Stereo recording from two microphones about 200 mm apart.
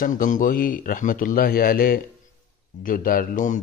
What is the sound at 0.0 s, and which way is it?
A man's voice, 40° left (ahead or behind).